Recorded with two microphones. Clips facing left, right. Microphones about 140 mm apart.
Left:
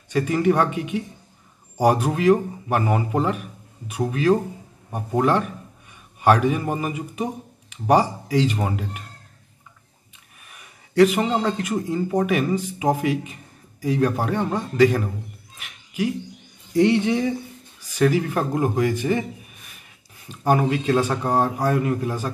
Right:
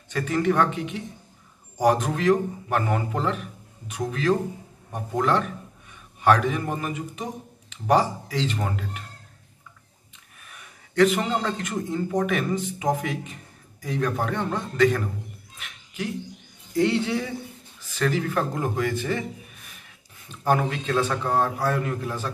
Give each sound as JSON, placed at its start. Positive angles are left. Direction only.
{"t": 0.1, "sound": "speech", "side_deg": 10}
{"t": 10.5, "sound": "speech", "side_deg": 10}
{"t": 15.6, "sound": "a sound", "side_deg": 10}
{"t": 16.7, "sound": "speech", "side_deg": 20}
{"t": 20.2, "sound": "speech", "side_deg": 15}